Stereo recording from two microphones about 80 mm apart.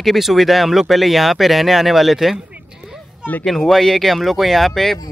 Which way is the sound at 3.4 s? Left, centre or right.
Centre.